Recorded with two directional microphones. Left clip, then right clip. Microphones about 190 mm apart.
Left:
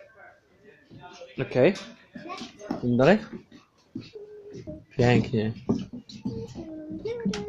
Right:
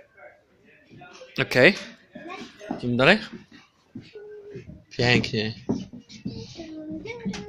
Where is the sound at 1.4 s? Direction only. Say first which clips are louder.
Right 4 dB; 5° right (ahead or behind).